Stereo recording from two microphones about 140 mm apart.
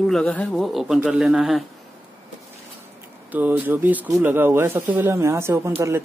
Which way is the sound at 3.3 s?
10° right (ahead or behind).